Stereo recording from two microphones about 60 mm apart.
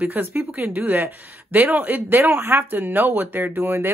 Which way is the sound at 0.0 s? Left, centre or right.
Right.